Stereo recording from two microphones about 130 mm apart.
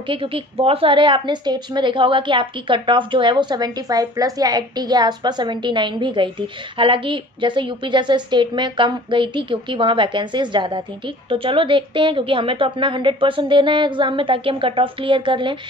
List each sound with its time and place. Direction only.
0.1 s a woman's voice: 45° right (ahead or behind)